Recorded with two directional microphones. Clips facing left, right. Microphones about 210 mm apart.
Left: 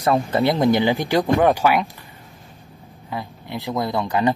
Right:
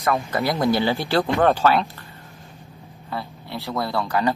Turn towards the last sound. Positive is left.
turn(degrees=20)  # may be behind; listen again after turning